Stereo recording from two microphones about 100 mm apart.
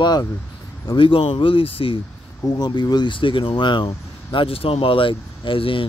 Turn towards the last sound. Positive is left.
turn(degrees=60)  # may be behind; listen again after turning